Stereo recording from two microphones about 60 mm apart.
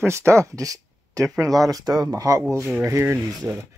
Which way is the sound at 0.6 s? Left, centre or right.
Right.